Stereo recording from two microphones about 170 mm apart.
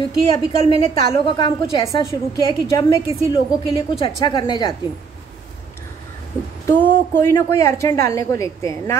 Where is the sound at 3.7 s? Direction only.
30° left (ahead or behind).